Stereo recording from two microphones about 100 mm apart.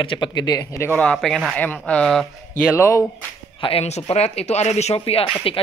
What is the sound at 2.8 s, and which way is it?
Speech, 30° left (ahead or behind).